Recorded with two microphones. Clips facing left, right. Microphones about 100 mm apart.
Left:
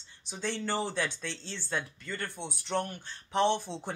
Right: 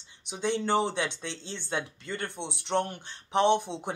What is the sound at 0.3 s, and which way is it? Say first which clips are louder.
Speech: right 6 dB; 20° right (ahead or behind).